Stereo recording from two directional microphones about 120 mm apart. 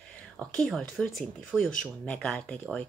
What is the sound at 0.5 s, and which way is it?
Speech, 5° left (ahead or behind).